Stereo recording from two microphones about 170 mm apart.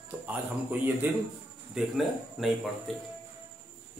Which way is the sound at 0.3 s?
10° right (ahead or behind).